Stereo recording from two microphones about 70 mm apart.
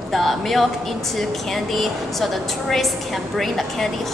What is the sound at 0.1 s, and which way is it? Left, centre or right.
A woman's voice, centre.